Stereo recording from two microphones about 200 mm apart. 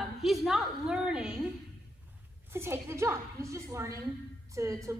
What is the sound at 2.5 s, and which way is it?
A woman's voice, 10° right (ahead or behind).